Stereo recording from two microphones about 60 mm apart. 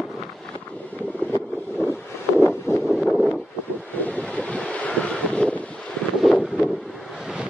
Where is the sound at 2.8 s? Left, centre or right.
Centre.